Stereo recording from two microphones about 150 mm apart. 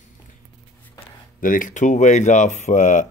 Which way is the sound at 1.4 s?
65° left (ahead or behind).